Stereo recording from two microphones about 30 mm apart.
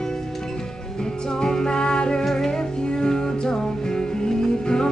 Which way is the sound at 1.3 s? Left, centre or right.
Left.